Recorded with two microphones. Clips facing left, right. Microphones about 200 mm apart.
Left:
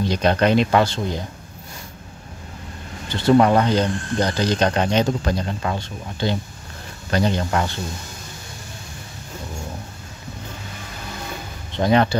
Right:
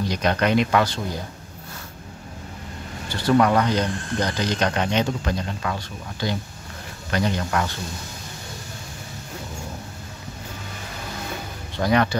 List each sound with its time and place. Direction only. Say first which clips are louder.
0.1 s speech: left 3 dB; 30° left (ahead or behind)
3.1 s speech: left 3 dB; 25° left (ahead or behind)
11.7 s speech: left 3 dB; 25° left (ahead or behind)